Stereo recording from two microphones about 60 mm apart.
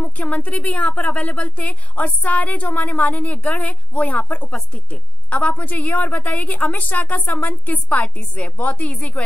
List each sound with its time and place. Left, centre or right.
0.0 s a woman's voice: left